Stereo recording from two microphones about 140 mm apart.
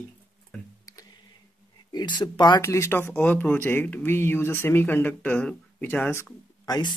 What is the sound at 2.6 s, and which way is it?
Speech, 20° left (ahead or behind).